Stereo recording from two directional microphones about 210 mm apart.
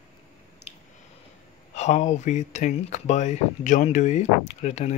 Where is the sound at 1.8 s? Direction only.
35° left (ahead or behind).